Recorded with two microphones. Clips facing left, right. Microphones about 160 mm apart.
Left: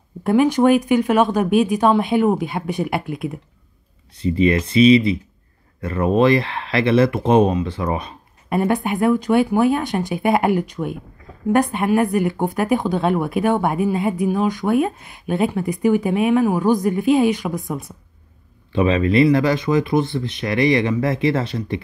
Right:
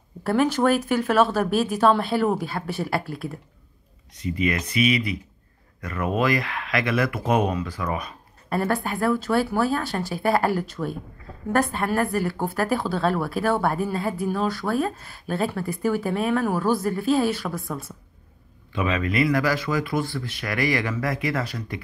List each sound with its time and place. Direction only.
0.2 s a woman's voice: 15° left (ahead or behind)
4.2 s speech: 30° left (ahead or behind)
8.5 s a woman's voice: 15° left (ahead or behind)
18.7 s speech: 30° left (ahead or behind)